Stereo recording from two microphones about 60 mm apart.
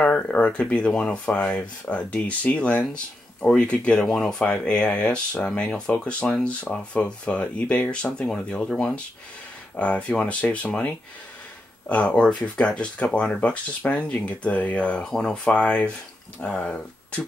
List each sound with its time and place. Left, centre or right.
0.0 s speech: left
15.0 s speech: centre